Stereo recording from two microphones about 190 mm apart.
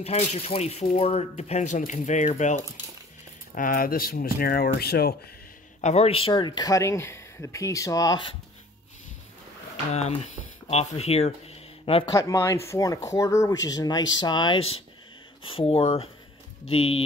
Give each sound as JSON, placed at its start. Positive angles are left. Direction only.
{"t": 0.0, "sound": "speech", "side_deg": 35}
{"t": 5.8, "sound": "speech", "side_deg": 35}
{"t": 9.9, "sound": "speech", "side_deg": 35}
{"t": 12.1, "sound": "speech", "side_deg": 15}